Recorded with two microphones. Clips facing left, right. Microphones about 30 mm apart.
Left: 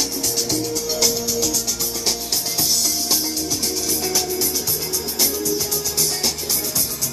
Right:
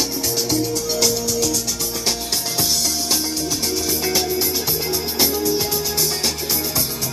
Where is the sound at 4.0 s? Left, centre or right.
Right.